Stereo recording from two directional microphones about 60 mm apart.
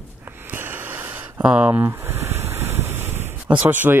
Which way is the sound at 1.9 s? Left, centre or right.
Right.